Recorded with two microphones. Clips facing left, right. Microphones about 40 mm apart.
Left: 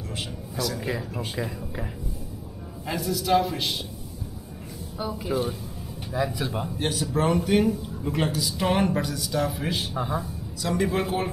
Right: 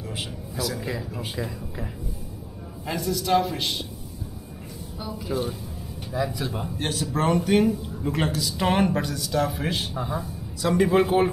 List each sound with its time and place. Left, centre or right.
0.6 s speech: centre
2.9 s speech: centre
4.9 s speech: centre
6.1 s speech: centre